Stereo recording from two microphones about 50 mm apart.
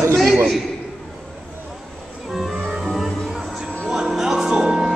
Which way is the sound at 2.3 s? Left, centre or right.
Centre.